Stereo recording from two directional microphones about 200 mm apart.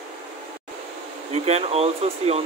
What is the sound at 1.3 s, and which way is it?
Speech, 30° right (ahead or behind).